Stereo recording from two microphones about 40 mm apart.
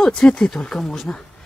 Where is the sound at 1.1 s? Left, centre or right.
Left.